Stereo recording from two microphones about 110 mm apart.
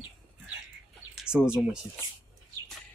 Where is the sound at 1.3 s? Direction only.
5° right (ahead or behind).